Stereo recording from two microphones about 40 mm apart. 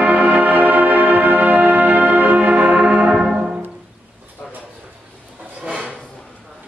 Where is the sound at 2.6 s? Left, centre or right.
Right.